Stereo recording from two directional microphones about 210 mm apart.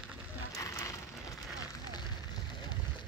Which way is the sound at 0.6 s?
15° left (ahead or behind).